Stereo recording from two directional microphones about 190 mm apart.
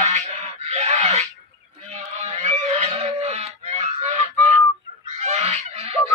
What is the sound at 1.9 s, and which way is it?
Goose, 30° right (ahead or behind).